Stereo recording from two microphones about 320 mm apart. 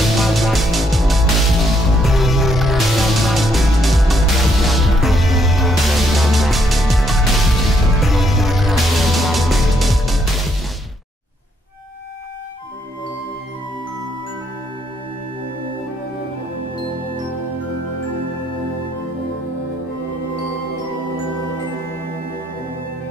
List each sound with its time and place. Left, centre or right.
0.0 s music: centre